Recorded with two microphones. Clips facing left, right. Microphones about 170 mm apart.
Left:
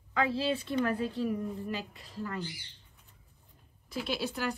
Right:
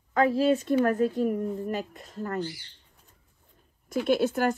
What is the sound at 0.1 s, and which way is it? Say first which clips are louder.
A woman's voice: right 8 dB; 45° right (ahead or behind).